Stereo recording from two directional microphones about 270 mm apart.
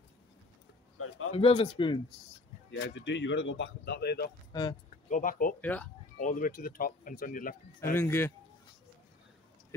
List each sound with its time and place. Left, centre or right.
0.9 s a sound: left
1.3 s speech: left
2.7 s speech: left
4.5 s speech: centre
5.1 s speech: left
5.6 s speech: centre
6.1 s speech: left
7.9 s speech: centre